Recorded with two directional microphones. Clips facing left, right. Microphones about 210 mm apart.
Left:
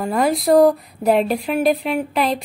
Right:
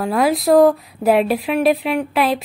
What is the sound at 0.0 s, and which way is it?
A woman's voice, centre (ahead or behind).